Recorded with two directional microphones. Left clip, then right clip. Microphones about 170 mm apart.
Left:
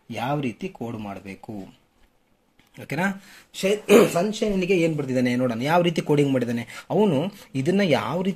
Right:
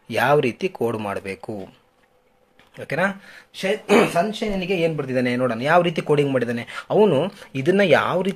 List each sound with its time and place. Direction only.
0.1 s speech: 20° right (ahead or behind)
2.7 s speech: 10° left (ahead or behind)